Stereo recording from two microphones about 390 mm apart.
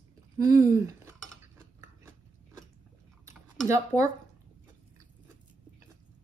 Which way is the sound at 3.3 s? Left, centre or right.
Centre.